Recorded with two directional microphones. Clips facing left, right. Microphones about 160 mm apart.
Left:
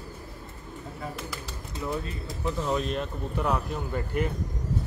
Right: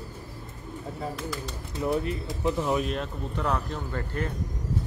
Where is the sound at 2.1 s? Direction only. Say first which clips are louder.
Right 4 dB; 20° right (ahead or behind).